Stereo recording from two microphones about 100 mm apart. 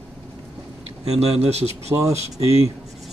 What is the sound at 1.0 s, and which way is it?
Speech, 90° right.